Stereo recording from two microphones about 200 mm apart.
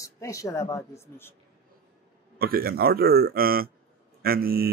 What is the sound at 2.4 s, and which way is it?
Speech, 50° right (ahead or behind).